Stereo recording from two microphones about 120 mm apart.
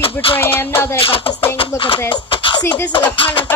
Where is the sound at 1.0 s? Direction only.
50° left (ahead or behind).